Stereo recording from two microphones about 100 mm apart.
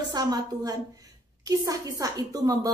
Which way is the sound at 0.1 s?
40° right (ahead or behind).